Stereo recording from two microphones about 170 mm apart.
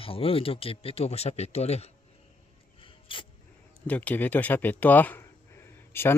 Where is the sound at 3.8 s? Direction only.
10° left (ahead or behind).